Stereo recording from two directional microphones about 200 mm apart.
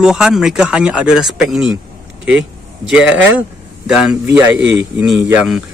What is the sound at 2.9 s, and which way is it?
Mantra, 5° right (ahead or behind).